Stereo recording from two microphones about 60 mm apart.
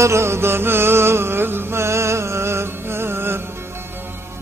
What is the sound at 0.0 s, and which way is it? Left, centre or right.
Music, right.